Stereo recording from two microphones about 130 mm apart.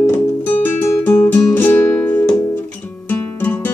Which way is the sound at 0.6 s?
15° left (ahead or behind).